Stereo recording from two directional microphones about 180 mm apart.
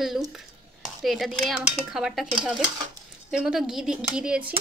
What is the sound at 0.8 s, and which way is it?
Speech, centre (ahead or behind).